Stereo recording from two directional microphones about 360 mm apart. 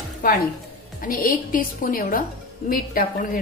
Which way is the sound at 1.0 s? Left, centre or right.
Left.